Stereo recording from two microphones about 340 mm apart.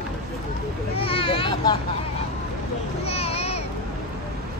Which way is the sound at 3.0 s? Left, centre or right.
Centre.